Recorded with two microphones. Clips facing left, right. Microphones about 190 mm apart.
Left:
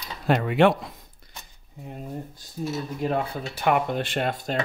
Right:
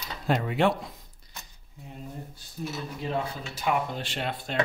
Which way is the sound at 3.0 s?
55° left (ahead or behind).